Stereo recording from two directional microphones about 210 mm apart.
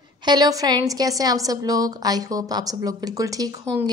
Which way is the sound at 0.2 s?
20° right (ahead or behind).